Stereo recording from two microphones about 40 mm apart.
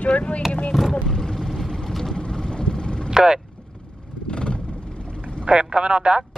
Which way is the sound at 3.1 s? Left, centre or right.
Centre.